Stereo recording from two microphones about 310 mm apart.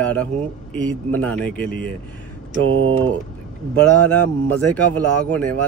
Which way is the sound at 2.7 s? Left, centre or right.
Right.